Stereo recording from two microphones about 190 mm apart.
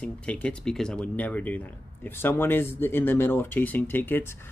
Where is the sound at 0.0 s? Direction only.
5° left (ahead or behind).